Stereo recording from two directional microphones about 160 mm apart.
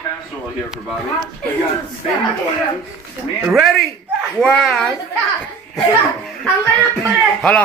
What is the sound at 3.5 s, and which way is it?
A child's voice, centre (ahead or behind).